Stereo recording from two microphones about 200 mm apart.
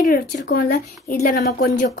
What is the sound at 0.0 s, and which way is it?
Speech, 45° left (ahead or behind).